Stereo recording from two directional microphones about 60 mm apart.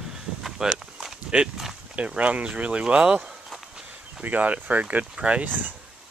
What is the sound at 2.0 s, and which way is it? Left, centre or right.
Speech, right.